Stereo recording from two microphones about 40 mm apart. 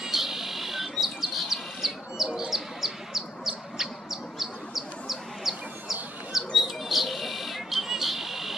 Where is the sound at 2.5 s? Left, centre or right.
Centre.